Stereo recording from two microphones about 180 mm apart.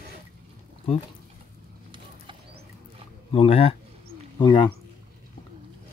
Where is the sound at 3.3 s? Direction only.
30° left (ahead or behind).